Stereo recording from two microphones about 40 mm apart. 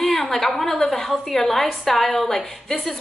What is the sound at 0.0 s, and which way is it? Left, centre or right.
A woman's voice, centre.